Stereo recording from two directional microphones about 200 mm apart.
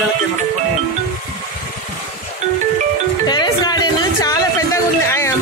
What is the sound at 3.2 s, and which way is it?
Music, 20° left (ahead or behind).